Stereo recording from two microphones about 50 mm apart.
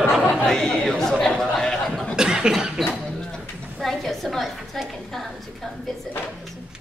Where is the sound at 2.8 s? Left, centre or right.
Centre.